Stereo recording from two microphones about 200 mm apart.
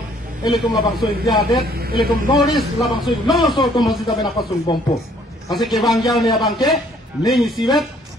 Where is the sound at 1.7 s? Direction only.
50° right (ahead or behind).